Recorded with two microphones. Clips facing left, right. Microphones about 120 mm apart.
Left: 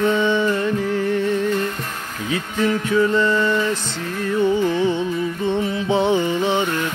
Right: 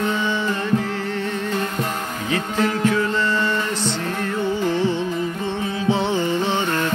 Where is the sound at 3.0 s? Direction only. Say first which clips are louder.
Left 4 dB; 15° left (ahead or behind).